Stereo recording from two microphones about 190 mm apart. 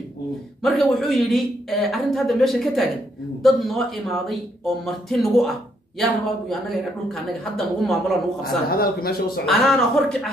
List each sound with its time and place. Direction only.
0.6 s a woman's voice: centre (ahead or behind)
8.4 s a man's voice: 50° left (ahead or behind)
9.5 s a woman's voice: centre (ahead or behind)